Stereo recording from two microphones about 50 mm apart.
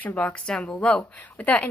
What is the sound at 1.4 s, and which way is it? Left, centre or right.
Speech, left.